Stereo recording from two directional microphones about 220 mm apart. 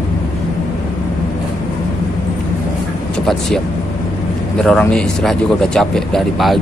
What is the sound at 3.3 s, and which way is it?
Speech, centre (ahead or behind).